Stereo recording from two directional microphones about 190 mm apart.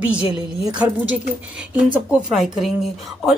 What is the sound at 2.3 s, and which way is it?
Speech, centre (ahead or behind).